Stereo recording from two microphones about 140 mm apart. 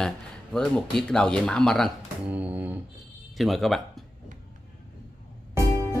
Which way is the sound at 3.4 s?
Centre (ahead or behind).